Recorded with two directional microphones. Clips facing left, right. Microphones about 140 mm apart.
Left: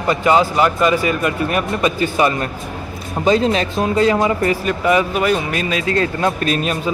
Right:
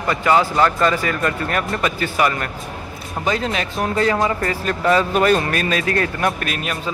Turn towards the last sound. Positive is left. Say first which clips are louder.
# left 5 dB
turn(degrees=30)  # may be behind; listen again after turning